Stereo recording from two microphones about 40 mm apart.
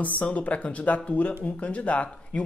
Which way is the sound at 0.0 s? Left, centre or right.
Left.